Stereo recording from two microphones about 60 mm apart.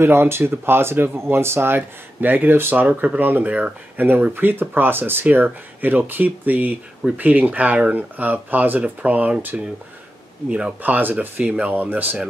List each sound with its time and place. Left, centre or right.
0.0 s speech: right
1.8 s speech: right